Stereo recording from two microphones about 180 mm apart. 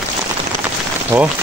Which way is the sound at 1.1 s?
15° right (ahead or behind).